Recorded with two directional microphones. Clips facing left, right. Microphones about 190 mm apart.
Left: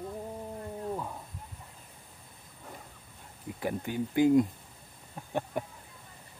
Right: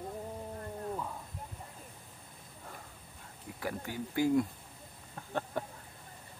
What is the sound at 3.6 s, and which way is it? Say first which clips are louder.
Speech: left 5 dB; 20° left (ahead or behind).